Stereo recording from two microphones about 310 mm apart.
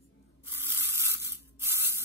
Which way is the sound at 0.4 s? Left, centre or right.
Centre.